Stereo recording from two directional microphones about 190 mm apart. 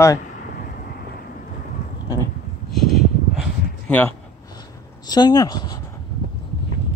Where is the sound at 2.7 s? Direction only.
Centre (ahead or behind).